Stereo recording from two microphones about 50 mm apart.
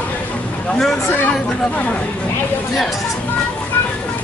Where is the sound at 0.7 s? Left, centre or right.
Centre.